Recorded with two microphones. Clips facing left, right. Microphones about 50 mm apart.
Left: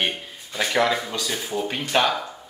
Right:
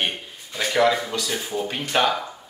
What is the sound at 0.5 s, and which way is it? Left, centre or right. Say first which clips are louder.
Speech: left 1 dB; left.